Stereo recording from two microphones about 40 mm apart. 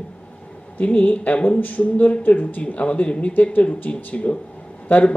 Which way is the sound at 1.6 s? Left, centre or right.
Left.